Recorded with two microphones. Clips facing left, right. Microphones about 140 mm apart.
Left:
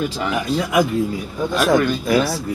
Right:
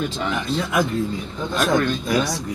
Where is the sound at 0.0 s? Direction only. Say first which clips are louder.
Left 3 dB; 5° left (ahead or behind).